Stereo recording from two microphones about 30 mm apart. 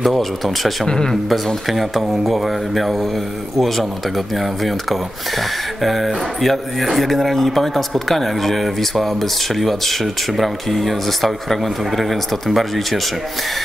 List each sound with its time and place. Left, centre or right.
0.0 s speech: centre
0.8 s speech: left
1.3 s speech: centre